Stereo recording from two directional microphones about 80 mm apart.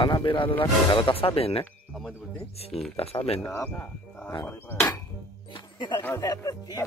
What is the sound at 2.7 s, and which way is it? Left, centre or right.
Speech, centre.